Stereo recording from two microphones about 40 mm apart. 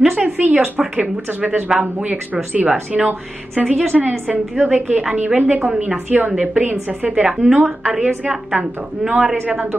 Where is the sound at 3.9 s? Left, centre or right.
Right.